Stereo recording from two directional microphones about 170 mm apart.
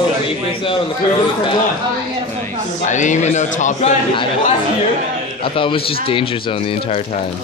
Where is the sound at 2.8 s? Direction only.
45° left (ahead or behind).